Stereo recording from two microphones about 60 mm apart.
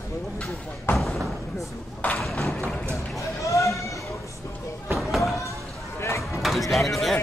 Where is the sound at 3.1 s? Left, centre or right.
Left.